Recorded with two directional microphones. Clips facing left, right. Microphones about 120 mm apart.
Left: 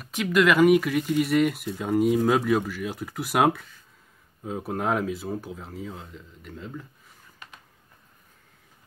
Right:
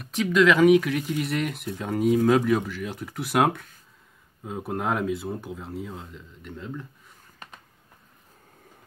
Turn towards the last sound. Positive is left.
turn(degrees=-40)  # may be behind; listen again after turning